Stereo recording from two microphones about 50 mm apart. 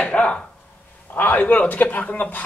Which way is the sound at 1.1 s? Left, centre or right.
Left.